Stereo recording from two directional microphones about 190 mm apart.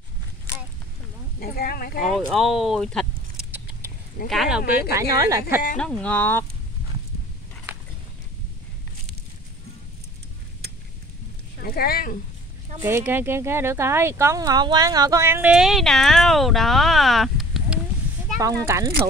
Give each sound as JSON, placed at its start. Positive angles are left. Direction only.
{"t": 1.4, "sound": "speech", "side_deg": 50}
{"t": 2.1, "sound": "speech", "side_deg": 0}
{"t": 4.9, "sound": "speech", "side_deg": -15}
{"t": 5.8, "sound": "speech", "side_deg": 5}
{"t": 11.6, "sound": "speech", "side_deg": 55}
{"t": 12.8, "sound": "speech", "side_deg": -10}